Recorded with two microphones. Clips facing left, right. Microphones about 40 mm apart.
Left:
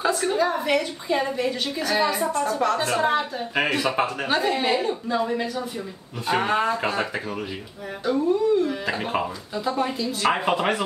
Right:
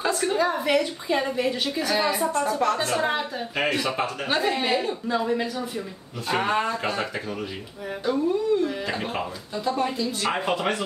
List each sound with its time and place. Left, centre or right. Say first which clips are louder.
0.0 s a woman's voice: left 1 dB; centre